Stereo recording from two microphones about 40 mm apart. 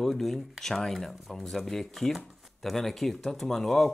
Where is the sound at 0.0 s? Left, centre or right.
Centre.